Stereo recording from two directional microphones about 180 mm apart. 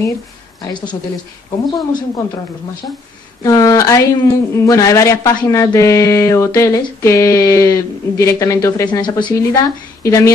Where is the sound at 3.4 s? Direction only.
20° left (ahead or behind).